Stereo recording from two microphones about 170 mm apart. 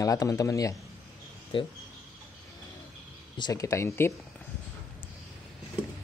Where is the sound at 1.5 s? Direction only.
30° left (ahead or behind).